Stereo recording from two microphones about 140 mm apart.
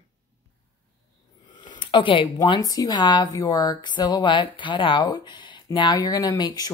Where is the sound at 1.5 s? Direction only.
35° left (ahead or behind).